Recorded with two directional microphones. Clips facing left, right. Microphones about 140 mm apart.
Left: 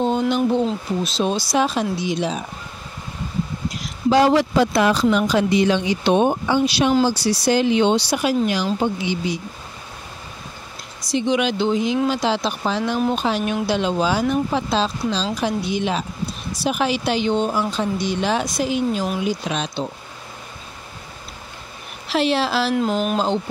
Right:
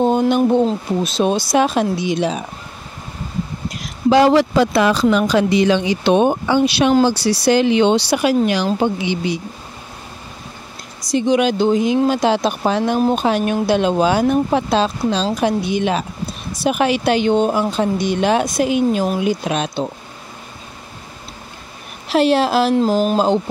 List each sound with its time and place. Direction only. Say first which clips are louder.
0.0 s speech: right 4 dB; 50° right (ahead or behind)
4.1 s speech: right 3 dB; 80° right
11.1 s speech: right 4 dB; 45° right (ahead or behind)
22.1 s speech: right 5 dB; 45° right (ahead or behind)
22.8 s speech: right 5 dB; 30° right (ahead or behind)